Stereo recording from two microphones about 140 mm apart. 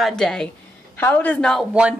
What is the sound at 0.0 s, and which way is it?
A woman's voice, 5° left (ahead or behind).